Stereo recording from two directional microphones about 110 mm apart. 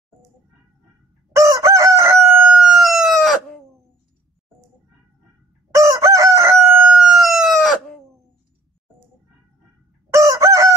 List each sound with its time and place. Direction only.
1.3 s chicken: 30° right (ahead or behind)
2.3 s chicken: 10° right (ahead or behind)
5.7 s chicken: 30° right (ahead or behind)
6.7 s chicken: 15° right (ahead or behind)
10.1 s chicken: 30° right (ahead or behind)